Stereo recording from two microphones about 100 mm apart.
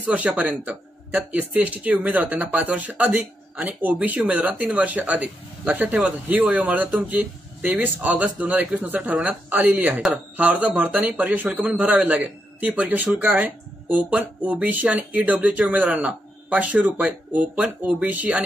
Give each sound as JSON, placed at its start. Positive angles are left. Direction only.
{"t": 0.0, "sound": "a man's voice", "side_deg": -15}